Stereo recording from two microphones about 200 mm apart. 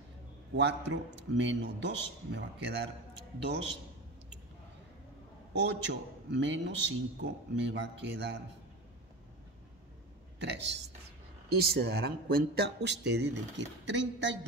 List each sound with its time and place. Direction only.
0.6 s speech: 60° right (ahead or behind)
5.5 s a man's voice: 60° right (ahead or behind)
10.4 s speech: 60° right (ahead or behind)